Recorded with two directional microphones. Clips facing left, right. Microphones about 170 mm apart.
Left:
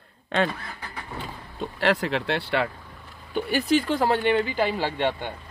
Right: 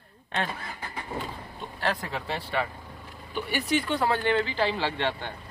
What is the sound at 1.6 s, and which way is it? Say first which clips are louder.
Speech: left 7 dB; 90° left.